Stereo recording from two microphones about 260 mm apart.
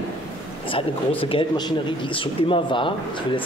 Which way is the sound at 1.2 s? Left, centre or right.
Centre.